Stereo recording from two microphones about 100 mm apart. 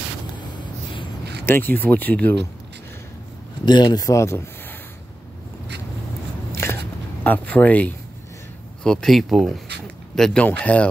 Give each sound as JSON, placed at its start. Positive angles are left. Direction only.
{"t": 1.4, "sound": "speech", "side_deg": 20}
{"t": 3.6, "sound": "a man's voice", "side_deg": 45}
{"t": 4.0, "sound": "speech", "side_deg": 30}
{"t": 6.5, "sound": "a sound", "side_deg": 30}
{"t": 7.2, "sound": "speech", "side_deg": 15}
{"t": 8.8, "sound": "speech", "side_deg": 5}